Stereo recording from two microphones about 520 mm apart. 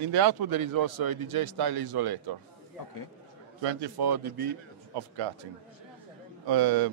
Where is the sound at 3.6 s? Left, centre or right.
Right.